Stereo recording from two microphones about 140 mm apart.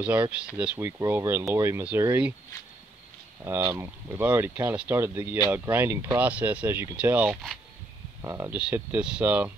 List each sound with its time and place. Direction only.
0.0 s speech: 10° right (ahead or behind)
3.4 s speech: 15° right (ahead or behind)
8.5 s speech: 10° right (ahead or behind)